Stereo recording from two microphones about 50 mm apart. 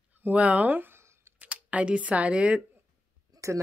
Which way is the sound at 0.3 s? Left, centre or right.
Right.